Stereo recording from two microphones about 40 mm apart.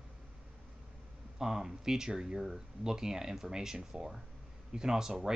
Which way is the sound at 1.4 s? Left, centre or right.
Centre.